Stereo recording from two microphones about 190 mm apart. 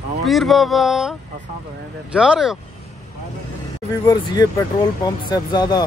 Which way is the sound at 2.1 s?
5° right (ahead or behind).